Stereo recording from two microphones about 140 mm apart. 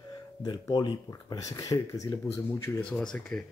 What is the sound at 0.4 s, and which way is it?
Speech, 25° left (ahead or behind).